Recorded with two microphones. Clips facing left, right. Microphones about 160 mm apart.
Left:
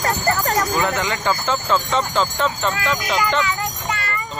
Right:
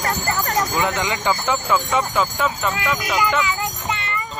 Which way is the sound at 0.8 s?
15° right (ahead or behind).